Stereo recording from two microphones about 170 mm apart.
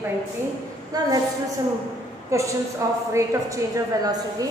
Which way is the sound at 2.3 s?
20° right (ahead or behind).